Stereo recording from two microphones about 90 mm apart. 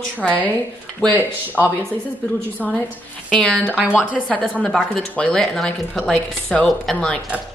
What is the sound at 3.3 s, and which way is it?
Speech, 5° left (ahead or behind).